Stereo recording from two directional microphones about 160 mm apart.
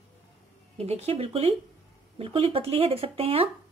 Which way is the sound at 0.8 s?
40° right (ahead or behind).